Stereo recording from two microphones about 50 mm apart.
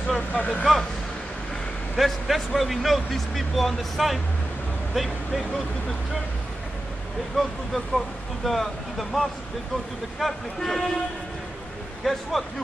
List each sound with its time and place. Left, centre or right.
0.3 s speech: left
2.0 s speech: centre
7.3 s speech: centre
12.0 s speech: centre